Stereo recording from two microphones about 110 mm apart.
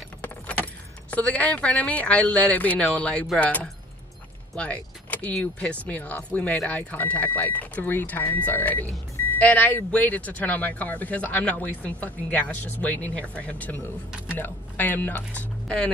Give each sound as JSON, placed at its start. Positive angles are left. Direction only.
{"t": 1.1, "sound": "speech", "side_deg": 15}